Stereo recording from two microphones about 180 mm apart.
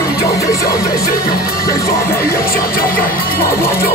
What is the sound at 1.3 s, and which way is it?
Music, 55° left (ahead or behind).